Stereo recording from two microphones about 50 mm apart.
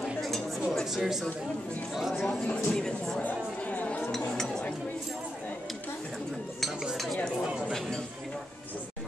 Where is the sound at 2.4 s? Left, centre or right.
Centre.